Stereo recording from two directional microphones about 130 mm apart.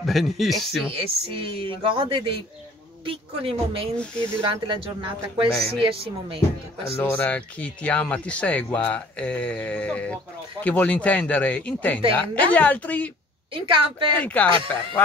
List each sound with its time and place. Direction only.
0.0 s speech: centre (ahead or behind)
0.9 s a woman's voice: 40° right (ahead or behind)
7.0 s speech: 15° left (ahead or behind)
13.5 s speech: 40° right (ahead or behind)
14.1 s speech: 10° left (ahead or behind)